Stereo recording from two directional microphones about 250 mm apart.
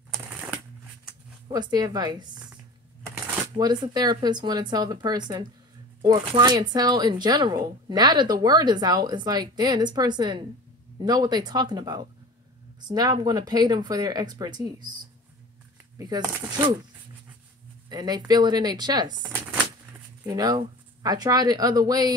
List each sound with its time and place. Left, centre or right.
1.5 s a woman's voice: centre
3.5 s a woman's voice: centre
16.0 s a woman's voice: centre
17.8 s a woman's voice: centre